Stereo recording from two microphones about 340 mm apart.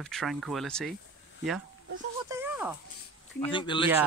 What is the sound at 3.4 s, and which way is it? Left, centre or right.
Speech, centre.